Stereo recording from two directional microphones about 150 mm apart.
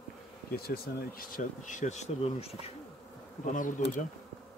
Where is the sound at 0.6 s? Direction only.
90° left; by 2.5 s 45° left (ahead or behind).